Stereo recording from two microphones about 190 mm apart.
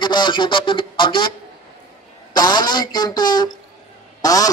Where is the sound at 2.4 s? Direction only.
20° left (ahead or behind).